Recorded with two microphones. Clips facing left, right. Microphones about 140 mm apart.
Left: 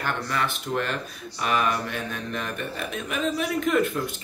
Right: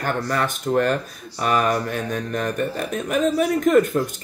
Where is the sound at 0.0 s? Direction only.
45° right (ahead or behind).